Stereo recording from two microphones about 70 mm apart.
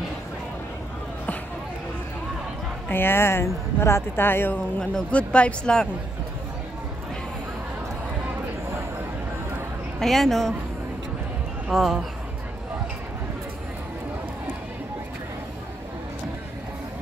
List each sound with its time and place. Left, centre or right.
2.9 s speech: left
4.7 s speech: centre
9.9 s a woman's voice: centre
11.6 s a woman's voice: centre